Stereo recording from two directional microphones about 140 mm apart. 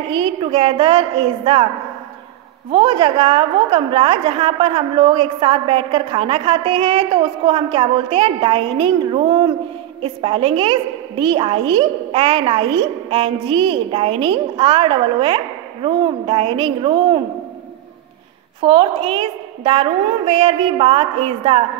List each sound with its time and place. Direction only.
0.1 s a woman's voice: 35° right (ahead or behind)
2.7 s a woman's voice: 35° right (ahead or behind)
18.6 s a woman's voice: 40° right (ahead or behind)